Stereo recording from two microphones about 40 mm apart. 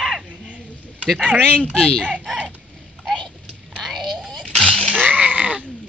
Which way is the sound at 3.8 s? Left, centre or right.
Centre.